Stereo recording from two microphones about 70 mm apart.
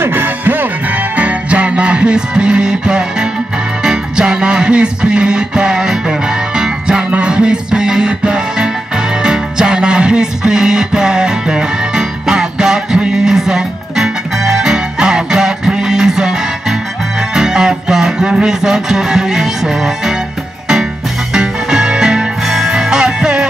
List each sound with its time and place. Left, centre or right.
0.0 s music: right; by 20.2 s centre
21.3 s music: centre